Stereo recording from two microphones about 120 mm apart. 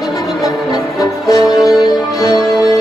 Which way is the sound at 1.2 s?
30° left (ahead or behind).